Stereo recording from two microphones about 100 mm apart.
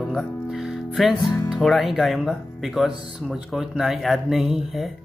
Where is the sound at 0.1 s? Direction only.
Centre (ahead or behind).